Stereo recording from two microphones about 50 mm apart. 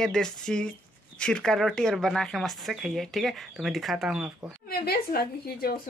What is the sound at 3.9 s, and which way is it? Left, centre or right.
Speech, centre.